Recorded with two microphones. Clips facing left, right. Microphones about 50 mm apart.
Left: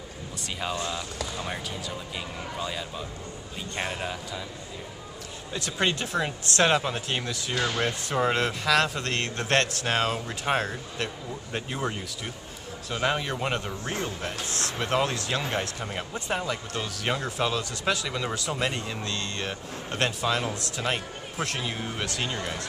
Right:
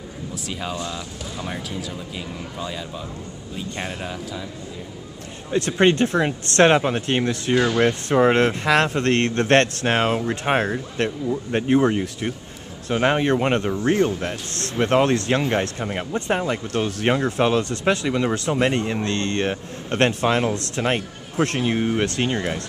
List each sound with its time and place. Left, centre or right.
0.7 s speech: centre
5.5 s speech: right
7.5 s speech: right
7.8 s speech: right
13.7 s speech: right
15.8 s speech: right
16.1 s speech: right
18.0 s speech: right